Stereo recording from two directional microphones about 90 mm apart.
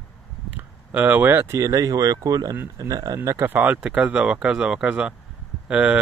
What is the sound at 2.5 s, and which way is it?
Speech, 30° right (ahead or behind).